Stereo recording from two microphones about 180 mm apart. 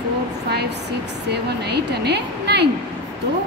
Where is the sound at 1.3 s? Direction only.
65° right (ahead or behind).